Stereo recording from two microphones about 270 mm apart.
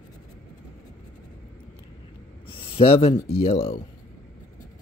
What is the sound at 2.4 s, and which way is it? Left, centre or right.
Speech, centre.